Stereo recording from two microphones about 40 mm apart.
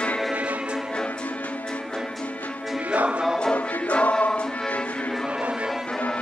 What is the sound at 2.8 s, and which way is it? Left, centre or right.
Music, right.